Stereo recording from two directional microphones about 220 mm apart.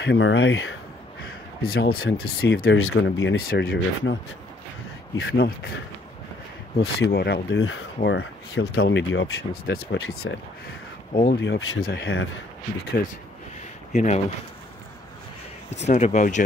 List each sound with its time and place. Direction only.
0.0 s speech: 55° left (ahead or behind)
1.2 s crow: 45° left (ahead or behind)
1.9 s speech: 70° left (ahead or behind)
3.4 s speech: 50° left (ahead or behind)
5.1 s speech: 65° left (ahead or behind)
6.8 s speech: 50° left (ahead or behind)
11.1 s speech: 50° left (ahead or behind)
13.9 s speech: 30° left (ahead or behind)
15.9 s speech: 35° left (ahead or behind)